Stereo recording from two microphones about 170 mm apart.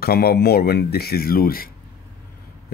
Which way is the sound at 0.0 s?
65° left (ahead or behind).